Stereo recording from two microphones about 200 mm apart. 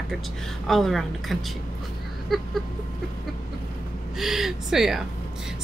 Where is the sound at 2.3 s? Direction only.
Centre (ahead or behind).